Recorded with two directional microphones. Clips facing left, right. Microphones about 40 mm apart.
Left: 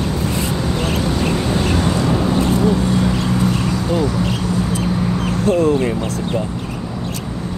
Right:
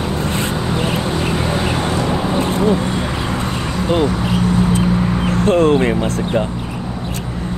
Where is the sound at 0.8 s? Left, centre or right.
Centre.